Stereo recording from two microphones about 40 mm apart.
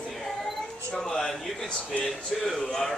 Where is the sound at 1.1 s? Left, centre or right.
Centre.